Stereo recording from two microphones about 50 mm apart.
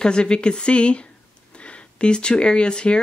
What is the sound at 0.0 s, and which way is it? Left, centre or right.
Speech, centre.